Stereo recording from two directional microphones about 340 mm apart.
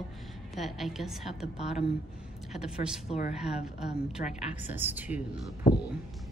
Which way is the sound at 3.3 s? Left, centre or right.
Centre.